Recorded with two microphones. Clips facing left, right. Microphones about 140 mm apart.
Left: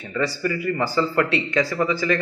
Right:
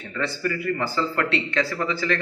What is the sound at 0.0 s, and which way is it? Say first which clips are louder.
Speech: left 3 dB; 10° left (ahead or behind).